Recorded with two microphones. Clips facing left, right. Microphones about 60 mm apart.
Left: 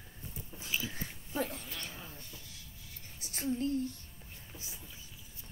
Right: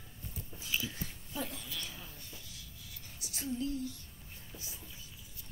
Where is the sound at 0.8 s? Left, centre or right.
Left.